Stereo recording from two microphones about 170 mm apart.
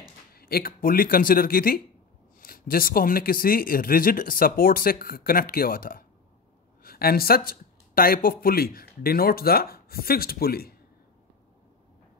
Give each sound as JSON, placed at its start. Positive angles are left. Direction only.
{"t": 0.3, "sound": "speech", "side_deg": 65}